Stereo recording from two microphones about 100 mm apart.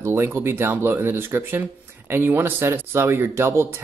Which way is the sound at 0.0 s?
25° right (ahead or behind).